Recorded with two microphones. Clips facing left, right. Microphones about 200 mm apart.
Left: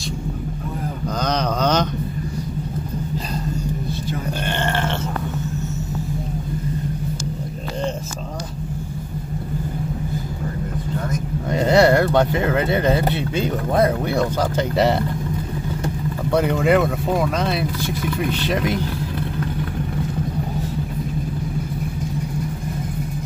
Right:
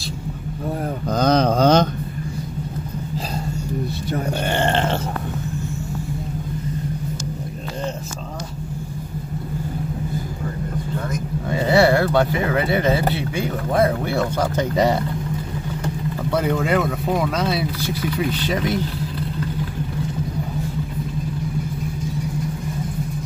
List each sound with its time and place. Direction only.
1.2 s mantra: 30° right (ahead or behind)
11.7 s speech: 20° left (ahead or behind)
16.4 s speech: centre (ahead or behind)